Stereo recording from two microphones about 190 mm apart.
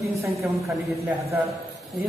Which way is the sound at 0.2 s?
15° right (ahead or behind).